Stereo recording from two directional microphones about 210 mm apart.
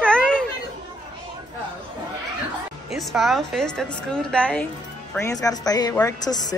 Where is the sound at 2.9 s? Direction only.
Centre (ahead or behind).